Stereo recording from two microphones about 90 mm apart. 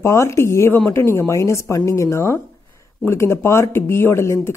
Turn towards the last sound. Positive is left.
turn(degrees=30)  # may be behind; listen again after turning